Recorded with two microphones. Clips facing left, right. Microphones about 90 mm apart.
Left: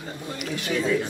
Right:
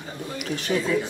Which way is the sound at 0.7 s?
30° right (ahead or behind).